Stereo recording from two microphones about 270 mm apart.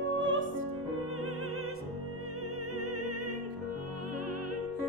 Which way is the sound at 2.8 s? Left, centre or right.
Right.